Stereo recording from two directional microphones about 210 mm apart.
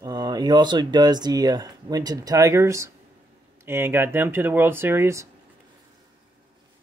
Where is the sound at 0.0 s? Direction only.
20° right (ahead or behind).